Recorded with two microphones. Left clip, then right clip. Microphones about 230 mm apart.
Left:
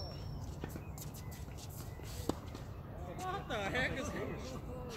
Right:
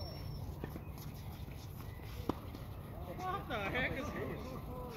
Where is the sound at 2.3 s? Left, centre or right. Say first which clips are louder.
Even; left.